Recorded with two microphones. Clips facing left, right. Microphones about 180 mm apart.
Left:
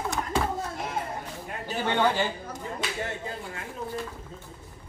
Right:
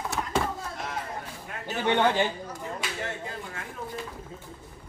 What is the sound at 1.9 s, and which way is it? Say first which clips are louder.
Speech: right 2 dB; 20° right (ahead or behind).